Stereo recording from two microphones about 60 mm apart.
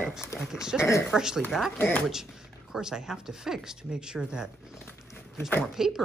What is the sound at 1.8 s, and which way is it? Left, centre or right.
Speech, left.